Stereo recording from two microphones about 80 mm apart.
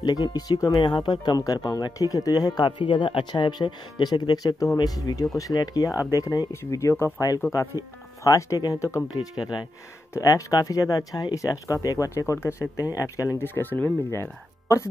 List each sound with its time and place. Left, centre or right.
0.0 s speech: left
1.4 s speech: left
6.5 s speech: left
9.4 s speech: left
10.1 s speech: left
13.4 s speech: left
14.1 s speech: left